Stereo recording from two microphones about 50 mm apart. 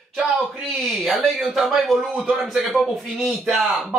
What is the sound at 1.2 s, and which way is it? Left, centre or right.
Speech, centre.